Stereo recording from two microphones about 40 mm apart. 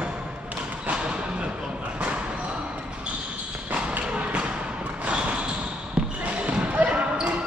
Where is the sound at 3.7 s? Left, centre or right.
Right.